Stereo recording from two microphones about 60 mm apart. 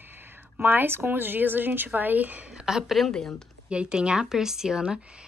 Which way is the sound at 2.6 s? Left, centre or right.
Centre.